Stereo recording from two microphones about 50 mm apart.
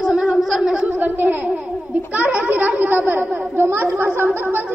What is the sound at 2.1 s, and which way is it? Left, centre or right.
A woman's voice, right.